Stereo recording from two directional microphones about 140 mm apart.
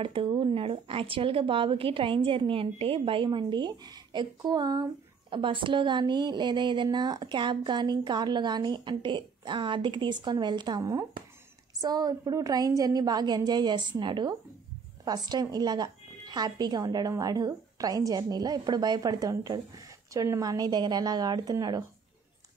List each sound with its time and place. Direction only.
0.0 s a woman's voice: 40° right (ahead or behind)